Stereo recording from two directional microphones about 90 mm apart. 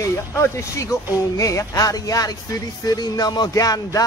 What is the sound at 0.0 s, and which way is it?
Music, 35° left (ahead or behind).